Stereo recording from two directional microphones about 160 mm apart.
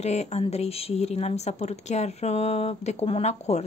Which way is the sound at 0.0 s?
45° left (ahead or behind).